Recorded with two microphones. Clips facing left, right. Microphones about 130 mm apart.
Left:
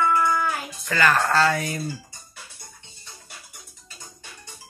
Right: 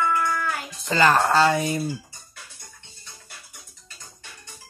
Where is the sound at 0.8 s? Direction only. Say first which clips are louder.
Right 2 dB; 25° right (ahead or behind).